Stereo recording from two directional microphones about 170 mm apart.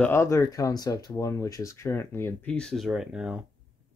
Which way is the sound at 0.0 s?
15° left (ahead or behind).